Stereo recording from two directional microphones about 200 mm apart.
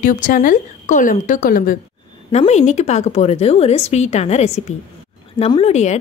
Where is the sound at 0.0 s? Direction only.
40° left (ahead or behind).